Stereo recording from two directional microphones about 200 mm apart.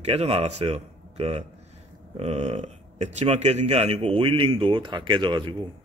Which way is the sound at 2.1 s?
30° right (ahead or behind).